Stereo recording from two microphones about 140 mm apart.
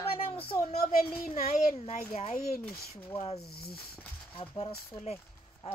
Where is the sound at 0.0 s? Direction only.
45° left (ahead or behind).